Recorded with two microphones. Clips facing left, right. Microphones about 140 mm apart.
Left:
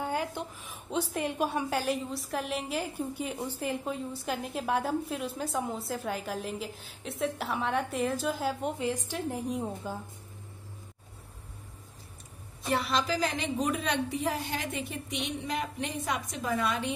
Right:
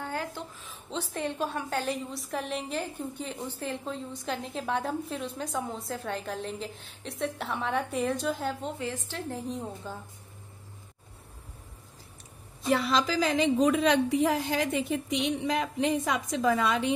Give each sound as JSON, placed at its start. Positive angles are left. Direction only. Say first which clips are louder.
{"t": 0.0, "sound": "a sound", "louder": "left 3 dB", "side_deg": 15}
{"t": 1.1, "sound": "a woman's voice", "louder": "right 1 dB", "side_deg": 10}
{"t": 13.6, "sound": "a woman's voice", "louder": "right 5 dB", "side_deg": -90}